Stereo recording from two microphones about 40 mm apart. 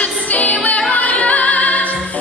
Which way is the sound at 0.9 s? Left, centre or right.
Left.